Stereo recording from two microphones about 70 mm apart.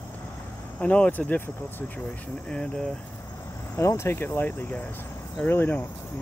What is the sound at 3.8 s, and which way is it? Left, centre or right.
Speech, left.